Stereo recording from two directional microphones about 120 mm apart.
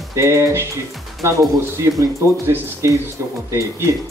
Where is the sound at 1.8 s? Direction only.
25° right (ahead or behind).